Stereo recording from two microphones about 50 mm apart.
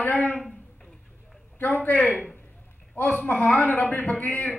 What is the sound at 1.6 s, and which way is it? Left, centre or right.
Speech, left.